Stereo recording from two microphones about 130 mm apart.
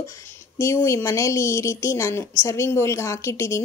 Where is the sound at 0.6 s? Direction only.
25° left (ahead or behind).